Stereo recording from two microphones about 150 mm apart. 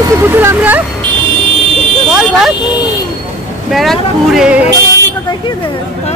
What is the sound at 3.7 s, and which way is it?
Speech, centre (ahead or behind).